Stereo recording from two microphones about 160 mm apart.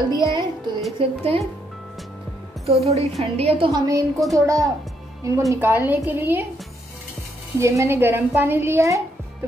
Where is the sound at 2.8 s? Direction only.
40° right (ahead or behind); by 4.0 s 25° right (ahead or behind).